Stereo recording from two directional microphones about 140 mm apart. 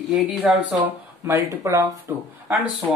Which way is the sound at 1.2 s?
20° right (ahead or behind).